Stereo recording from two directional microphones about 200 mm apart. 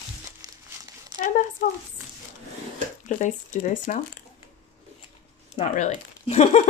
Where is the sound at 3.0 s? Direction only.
35° left (ahead or behind).